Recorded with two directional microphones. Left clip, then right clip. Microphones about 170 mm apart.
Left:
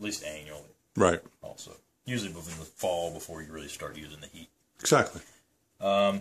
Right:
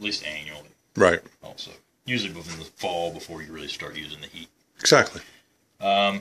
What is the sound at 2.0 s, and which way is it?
Speech, 30° left (ahead or behind).